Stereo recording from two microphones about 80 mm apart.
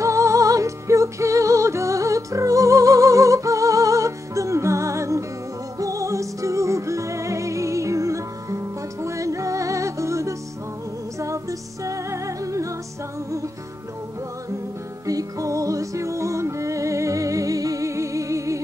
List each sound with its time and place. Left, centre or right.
0.0 s music: right
15.0 s music: right